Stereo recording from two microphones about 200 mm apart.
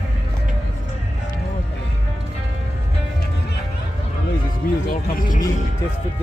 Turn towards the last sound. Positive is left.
turn(degrees=40)  # may be behind; listen again after turning